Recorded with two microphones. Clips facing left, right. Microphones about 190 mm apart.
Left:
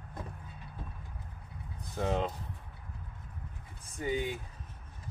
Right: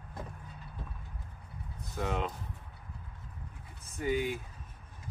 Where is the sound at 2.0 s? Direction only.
35° left (ahead or behind).